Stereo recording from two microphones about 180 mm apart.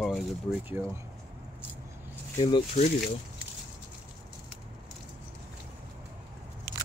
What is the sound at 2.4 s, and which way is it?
Speech, 25° left (ahead or behind).